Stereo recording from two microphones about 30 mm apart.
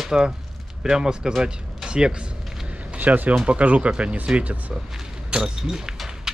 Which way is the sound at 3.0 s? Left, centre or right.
Right.